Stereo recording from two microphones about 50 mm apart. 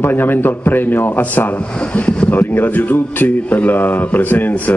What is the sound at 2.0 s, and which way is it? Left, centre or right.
Speech, left.